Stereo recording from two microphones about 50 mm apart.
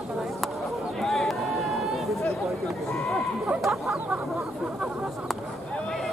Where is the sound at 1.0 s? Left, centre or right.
Centre.